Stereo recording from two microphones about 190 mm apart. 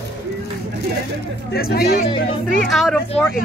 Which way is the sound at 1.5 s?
55° left (ahead or behind).